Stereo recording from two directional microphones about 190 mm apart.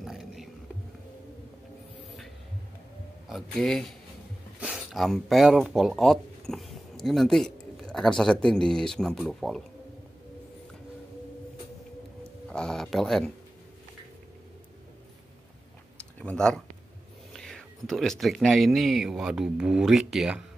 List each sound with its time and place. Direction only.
0.0 s a sound: centre (ahead or behind)
3.3 s speech: centre (ahead or behind)
12.4 s speech: 5° left (ahead or behind)
16.2 s speech: 5° left (ahead or behind)